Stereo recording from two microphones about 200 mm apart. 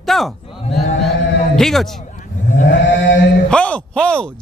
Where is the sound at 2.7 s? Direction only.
65° left (ahead or behind).